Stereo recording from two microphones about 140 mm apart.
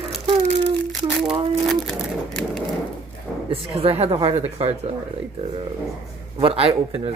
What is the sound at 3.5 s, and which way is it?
A man's voice, 45° right (ahead or behind).